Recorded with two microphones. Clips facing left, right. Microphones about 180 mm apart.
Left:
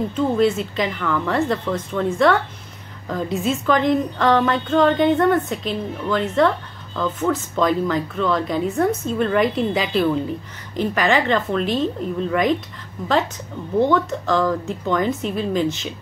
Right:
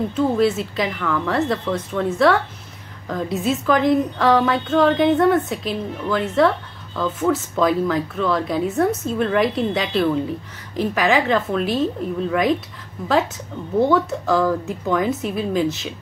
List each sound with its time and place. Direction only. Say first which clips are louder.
0.1 s a woman's voice: even; 5° right (ahead or behind)
13.7 s a woman's voice: right 1 dB; 5° right (ahead or behind)